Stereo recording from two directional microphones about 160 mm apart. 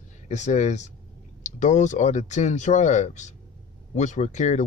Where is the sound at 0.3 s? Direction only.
45° left (ahead or behind).